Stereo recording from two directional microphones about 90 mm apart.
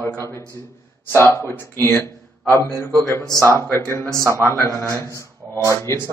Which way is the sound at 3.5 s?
30° left (ahead or behind).